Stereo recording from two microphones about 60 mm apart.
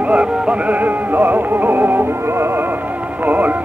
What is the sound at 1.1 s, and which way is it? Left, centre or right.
Music, right.